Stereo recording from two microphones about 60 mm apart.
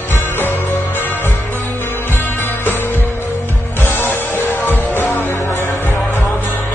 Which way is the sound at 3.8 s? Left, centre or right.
Left.